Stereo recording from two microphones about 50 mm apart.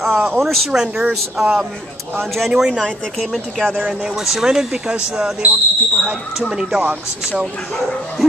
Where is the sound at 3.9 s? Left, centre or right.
Centre.